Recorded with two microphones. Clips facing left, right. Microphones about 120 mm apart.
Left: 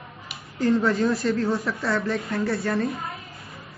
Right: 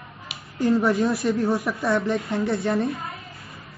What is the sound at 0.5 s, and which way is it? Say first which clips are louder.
Speech: right 1 dB; 15° right (ahead or behind).